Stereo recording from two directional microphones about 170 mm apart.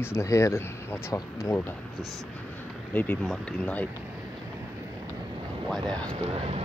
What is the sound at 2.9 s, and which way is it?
Speech, 10° left (ahead or behind).